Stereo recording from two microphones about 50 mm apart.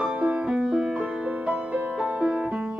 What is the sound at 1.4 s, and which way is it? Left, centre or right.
Music, right.